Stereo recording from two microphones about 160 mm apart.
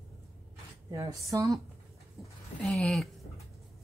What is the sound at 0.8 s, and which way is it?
Speech, 20° right (ahead or behind).